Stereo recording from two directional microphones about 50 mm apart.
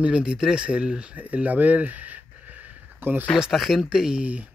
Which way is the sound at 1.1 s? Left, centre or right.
Right.